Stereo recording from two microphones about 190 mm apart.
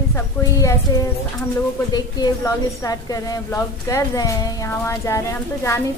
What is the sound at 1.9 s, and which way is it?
A woman's voice, 20° left (ahead or behind).